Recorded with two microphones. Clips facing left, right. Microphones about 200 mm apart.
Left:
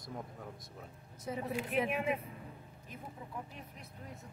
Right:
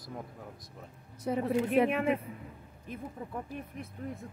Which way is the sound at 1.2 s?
65° right (ahead or behind).